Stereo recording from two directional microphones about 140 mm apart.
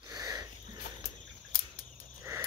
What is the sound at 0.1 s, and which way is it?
Wheeze, 25° right (ahead or behind).